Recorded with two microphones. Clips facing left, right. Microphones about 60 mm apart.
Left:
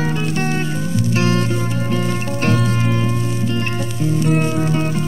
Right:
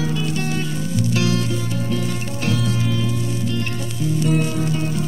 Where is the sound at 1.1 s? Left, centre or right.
Left.